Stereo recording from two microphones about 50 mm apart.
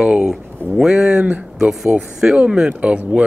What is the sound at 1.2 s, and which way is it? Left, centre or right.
Speech, right.